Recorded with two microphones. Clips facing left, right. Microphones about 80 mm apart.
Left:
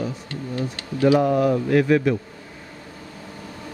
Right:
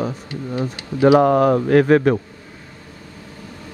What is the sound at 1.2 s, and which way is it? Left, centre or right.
Speech, right.